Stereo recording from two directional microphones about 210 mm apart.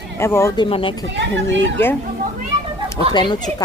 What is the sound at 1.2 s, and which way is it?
Speech, 60° right (ahead or behind).